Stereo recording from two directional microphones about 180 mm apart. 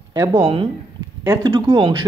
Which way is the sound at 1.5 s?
25° right (ahead or behind).